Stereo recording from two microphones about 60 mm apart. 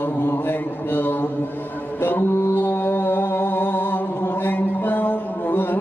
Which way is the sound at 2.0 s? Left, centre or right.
Left.